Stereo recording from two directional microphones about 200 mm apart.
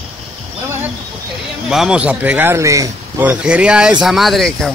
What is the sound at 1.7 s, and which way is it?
Speech, 5° right (ahead or behind).